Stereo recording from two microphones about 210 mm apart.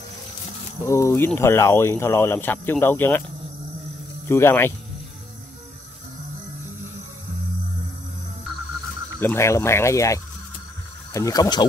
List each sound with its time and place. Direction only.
0.8 s speech: 15° left (ahead or behind)
4.3 s speech: 10° left (ahead or behind)
9.2 s speech: 10° left (ahead or behind)